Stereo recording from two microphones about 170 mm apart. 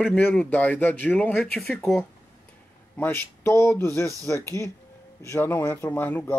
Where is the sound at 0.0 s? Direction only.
5° left (ahead or behind).